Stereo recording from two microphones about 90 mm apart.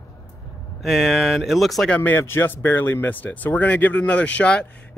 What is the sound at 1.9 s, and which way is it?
Speech, 20° left (ahead or behind).